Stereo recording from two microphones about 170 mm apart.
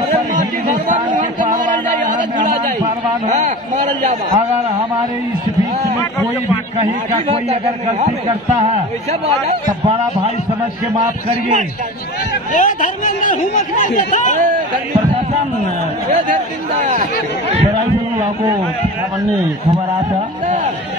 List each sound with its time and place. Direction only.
0.3 s a sound: 50° right (ahead or behind)
3.3 s a man's voice: 45° right (ahead or behind)
11.0 s a man's voice: 50° right (ahead or behind)
12.5 s speech: 50° left (ahead or behind)
16.8 s a man's voice: 45° right (ahead or behind)